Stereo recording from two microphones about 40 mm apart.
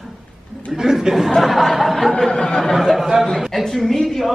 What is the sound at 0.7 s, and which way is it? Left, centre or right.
Speech, centre.